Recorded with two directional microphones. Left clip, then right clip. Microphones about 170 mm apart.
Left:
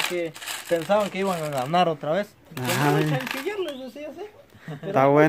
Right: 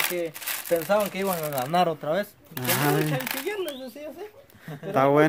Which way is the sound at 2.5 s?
25° right (ahead or behind).